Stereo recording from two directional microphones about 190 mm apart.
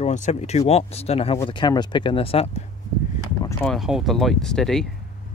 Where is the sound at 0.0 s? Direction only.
40° left (ahead or behind).